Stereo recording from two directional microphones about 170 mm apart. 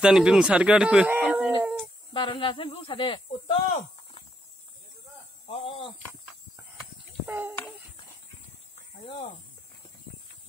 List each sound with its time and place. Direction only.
0.0 s speech: 5° right (ahead or behind)
1.6 s dog: 5° right (ahead or behind)
2.1 s speech: 30° left (ahead or behind)
3.3 s snake: 35° left (ahead or behind)
5.5 s speech: 35° left (ahead or behind)
7.2 s a child's voice: 15° right (ahead or behind)
9.0 s speech: 35° left (ahead or behind)